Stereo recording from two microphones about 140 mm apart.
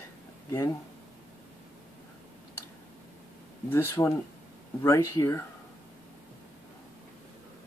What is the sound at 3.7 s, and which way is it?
Speech, 20° left (ahead or behind).